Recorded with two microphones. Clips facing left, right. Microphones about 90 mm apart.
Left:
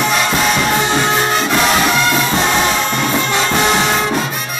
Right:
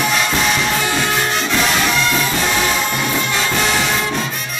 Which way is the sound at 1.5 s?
40° left (ahead or behind).